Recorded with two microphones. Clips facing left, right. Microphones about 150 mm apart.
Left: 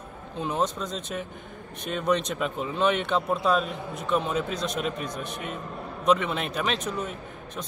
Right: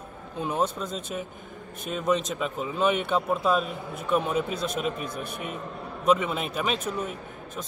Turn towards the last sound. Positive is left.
turn(degrees=-5)  # may be behind; listen again after turning